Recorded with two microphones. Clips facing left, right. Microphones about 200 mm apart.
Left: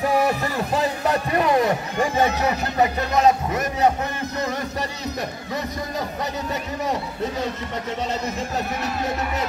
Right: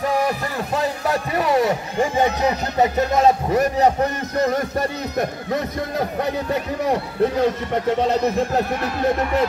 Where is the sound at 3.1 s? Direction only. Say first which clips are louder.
Right 1 dB; 35° right (ahead or behind).